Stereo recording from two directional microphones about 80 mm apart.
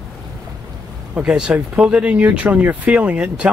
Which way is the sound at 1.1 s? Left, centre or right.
Centre.